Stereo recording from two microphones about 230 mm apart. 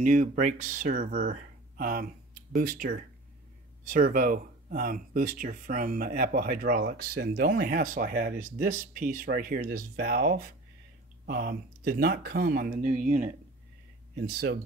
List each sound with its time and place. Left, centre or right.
0.0 s speech: right